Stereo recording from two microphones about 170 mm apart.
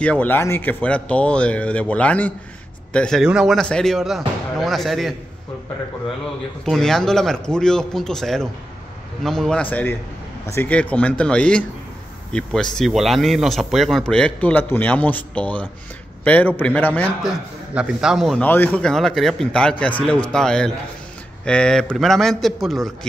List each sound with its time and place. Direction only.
0.0 s speech: 5° left (ahead or behind)
6.6 s speech: 5° left (ahead or behind)
17.7 s speech: 5° right (ahead or behind)
18.4 s speech: 10° left (ahead or behind)